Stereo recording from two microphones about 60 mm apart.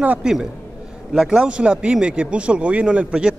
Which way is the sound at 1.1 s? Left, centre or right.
Centre.